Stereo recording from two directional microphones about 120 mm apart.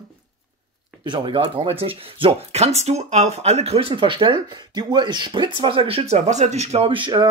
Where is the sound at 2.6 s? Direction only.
65° right (ahead or behind).